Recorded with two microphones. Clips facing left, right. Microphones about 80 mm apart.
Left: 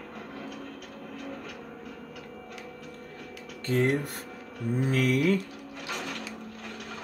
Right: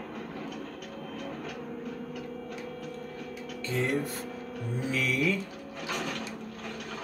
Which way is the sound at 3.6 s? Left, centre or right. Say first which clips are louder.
Left 4 dB; left.